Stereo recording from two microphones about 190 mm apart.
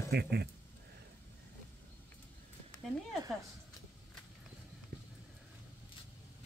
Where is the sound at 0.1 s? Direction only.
60° right (ahead or behind).